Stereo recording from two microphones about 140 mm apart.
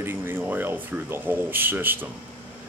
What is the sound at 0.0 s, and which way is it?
Speech, 15° right (ahead or behind).